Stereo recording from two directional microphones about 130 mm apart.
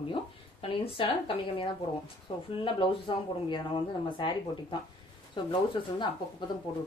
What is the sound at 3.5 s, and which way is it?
A woman's voice, 35° left (ahead or behind).